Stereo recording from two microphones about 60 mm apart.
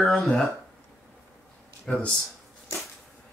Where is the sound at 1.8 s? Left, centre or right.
Centre.